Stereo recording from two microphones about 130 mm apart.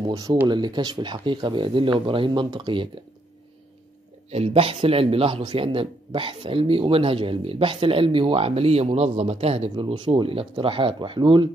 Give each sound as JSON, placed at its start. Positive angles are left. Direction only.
{"t": 0.0, "sound": "speech", "side_deg": -35}
{"t": 4.3, "sound": "speech", "side_deg": -50}